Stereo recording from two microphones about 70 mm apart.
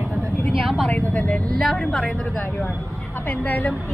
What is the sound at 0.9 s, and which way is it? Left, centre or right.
Speech, centre.